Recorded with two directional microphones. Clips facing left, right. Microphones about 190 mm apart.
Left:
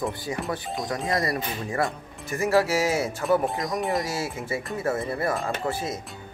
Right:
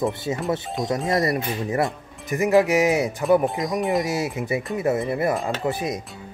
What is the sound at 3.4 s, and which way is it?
Speech, centre (ahead or behind).